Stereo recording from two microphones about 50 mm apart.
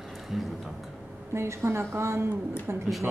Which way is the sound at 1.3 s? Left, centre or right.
Right.